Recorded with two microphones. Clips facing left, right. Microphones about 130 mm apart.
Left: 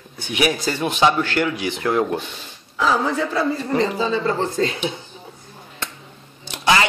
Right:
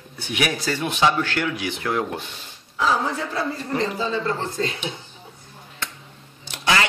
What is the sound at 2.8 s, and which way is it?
Speech, 90° left.